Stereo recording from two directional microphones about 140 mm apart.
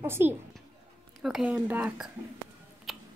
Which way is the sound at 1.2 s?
5° right (ahead or behind).